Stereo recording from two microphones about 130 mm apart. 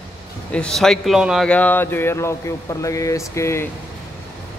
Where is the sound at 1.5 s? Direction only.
15° left (ahead or behind).